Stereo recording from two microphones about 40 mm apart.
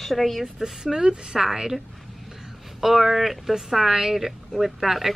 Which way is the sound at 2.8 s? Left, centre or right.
Centre.